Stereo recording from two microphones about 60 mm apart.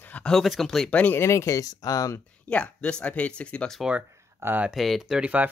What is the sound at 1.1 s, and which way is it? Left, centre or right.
Speech, left.